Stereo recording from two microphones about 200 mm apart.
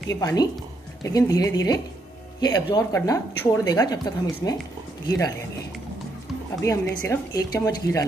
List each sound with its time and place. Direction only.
0.1 s speech: 15° left (ahead or behind)
6.9 s speech: 15° left (ahead or behind)